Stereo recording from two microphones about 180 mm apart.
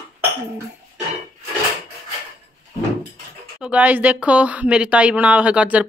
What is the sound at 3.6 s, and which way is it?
Speech, 10° right (ahead or behind).